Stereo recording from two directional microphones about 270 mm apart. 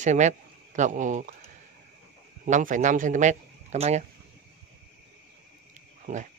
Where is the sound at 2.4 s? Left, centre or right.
Right.